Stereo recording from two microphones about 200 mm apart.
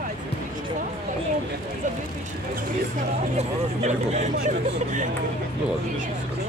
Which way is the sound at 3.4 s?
35° right (ahead or behind).